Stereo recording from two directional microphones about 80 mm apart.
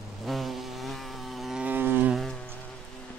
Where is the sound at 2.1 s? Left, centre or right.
Centre.